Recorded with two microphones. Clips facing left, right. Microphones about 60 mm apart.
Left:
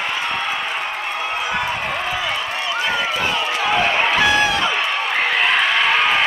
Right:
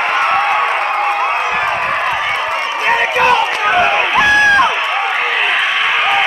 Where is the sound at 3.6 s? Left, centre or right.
Right.